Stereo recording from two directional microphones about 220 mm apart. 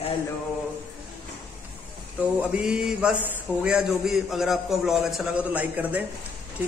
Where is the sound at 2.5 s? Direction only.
5° right (ahead or behind).